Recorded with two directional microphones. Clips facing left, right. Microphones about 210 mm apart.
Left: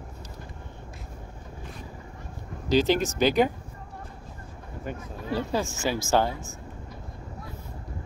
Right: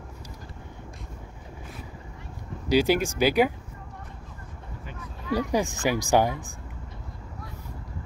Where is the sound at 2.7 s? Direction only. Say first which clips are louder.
Even; 10° right (ahead or behind).